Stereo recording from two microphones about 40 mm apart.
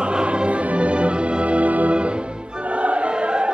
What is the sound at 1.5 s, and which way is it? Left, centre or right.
Organ, right.